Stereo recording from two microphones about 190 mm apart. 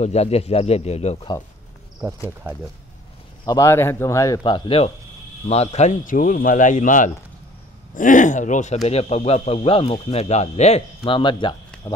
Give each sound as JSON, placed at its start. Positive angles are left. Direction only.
{"t": 0.0, "sound": "speech", "side_deg": 35}
{"t": 2.0, "sound": "speech", "side_deg": -20}
{"t": 3.4, "sound": "a man's voice", "side_deg": 15}
{"t": 11.7, "sound": "a sound", "side_deg": 5}